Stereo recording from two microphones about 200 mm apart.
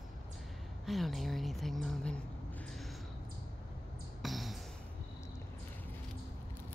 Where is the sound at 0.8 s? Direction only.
Centre (ahead or behind).